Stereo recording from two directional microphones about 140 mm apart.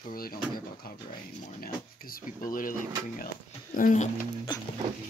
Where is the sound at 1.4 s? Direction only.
75° left (ahead or behind).